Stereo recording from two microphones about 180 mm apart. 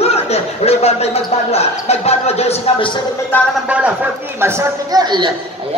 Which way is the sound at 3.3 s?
10° left (ahead or behind).